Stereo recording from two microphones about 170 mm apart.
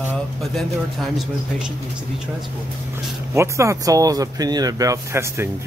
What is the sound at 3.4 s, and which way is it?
Speech, 15° right (ahead or behind).